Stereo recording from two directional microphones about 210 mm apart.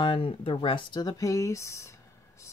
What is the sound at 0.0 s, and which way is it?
Speech, 25° left (ahead or behind).